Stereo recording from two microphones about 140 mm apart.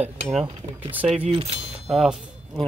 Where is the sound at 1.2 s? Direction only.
45° right (ahead or behind).